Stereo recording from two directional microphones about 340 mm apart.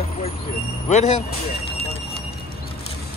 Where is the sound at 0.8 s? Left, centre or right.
Centre.